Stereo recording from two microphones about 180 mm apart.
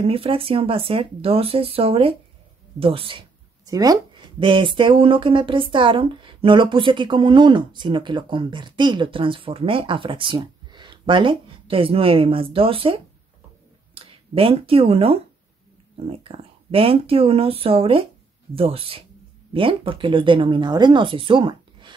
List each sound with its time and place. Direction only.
0.0 s speech: 30° right (ahead or behind)